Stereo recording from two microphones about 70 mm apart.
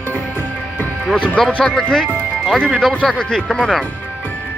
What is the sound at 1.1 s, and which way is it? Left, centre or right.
Speech, centre.